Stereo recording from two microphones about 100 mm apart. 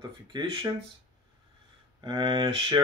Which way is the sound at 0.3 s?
50° right (ahead or behind).